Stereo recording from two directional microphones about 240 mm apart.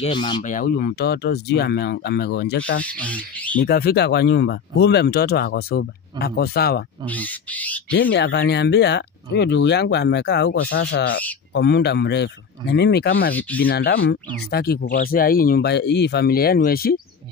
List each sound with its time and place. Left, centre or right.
0.0 s speech: centre
0.4 s speech: left
2.8 s speech: centre
3.5 s speech: left
7.1 s speech: centre
7.9 s speech: left